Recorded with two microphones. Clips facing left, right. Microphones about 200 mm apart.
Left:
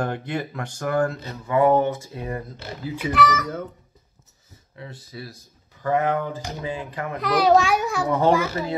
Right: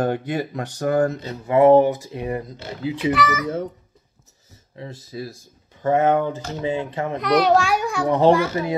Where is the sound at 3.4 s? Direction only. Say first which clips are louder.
Right 5 dB; 30° right (ahead or behind).